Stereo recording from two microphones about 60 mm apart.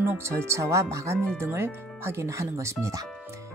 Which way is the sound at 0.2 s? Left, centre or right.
Right.